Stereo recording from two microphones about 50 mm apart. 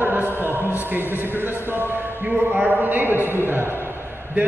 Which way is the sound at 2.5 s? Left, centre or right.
Right.